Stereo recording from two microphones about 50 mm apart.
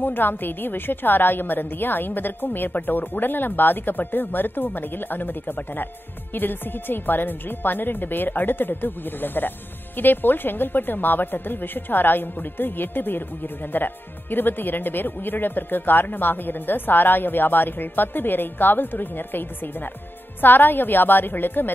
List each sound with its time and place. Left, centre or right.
0.0 s speech: left